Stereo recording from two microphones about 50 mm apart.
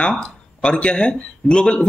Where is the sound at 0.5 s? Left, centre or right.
Centre.